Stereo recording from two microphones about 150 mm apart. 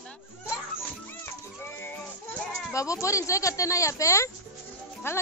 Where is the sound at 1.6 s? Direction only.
15° left (ahead or behind).